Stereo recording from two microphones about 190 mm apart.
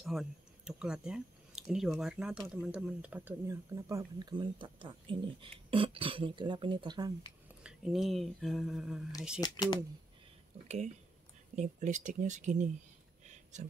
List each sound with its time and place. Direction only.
0.0 s speech: centre (ahead or behind); by 7.1 s 25° right (ahead or behind)
7.6 s speech: 5° right (ahead or behind)
9.4 s speech: 25° left (ahead or behind)
11.5 s speech: 40° right (ahead or behind)